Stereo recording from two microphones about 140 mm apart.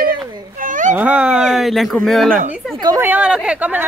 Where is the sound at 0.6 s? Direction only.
70° right (ahead or behind).